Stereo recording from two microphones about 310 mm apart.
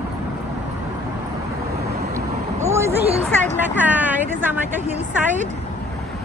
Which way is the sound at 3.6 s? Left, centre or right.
Centre.